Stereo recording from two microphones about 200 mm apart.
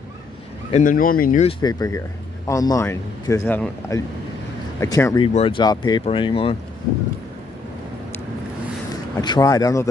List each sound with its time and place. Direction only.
0.7 s speech: 40° left (ahead or behind)
1.6 s a man's voice: 20° left (ahead or behind)
5.2 s speech: 30° left (ahead or behind)
9.2 s a man's voice: 20° left (ahead or behind)